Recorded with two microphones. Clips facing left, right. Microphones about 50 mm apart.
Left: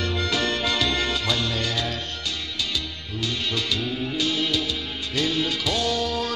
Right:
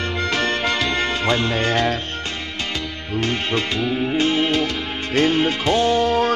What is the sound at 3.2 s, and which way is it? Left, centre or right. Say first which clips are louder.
Music: right 6 dB; right.